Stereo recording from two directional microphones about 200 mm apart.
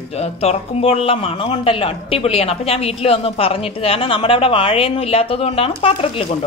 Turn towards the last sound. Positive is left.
turn(degrees=25)  # may be behind; listen again after turning